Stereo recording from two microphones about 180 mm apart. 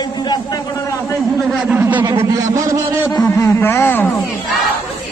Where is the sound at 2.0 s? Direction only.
20° right (ahead or behind).